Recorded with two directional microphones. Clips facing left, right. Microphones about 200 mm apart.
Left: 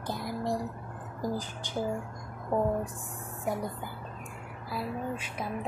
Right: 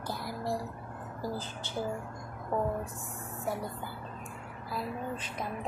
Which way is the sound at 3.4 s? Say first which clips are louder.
Left 3 dB; 15° left (ahead or behind).